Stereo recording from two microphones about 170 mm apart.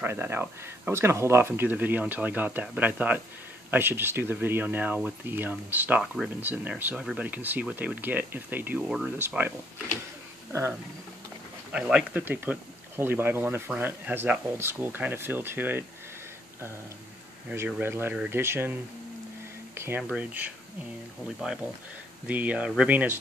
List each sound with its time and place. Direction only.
0.0 s speech: 15° right (ahead or behind)
11.7 s speech: 5° right (ahead or behind)
17.5 s speech: 10° right (ahead or behind)
22.3 s speech: 10° right (ahead or behind)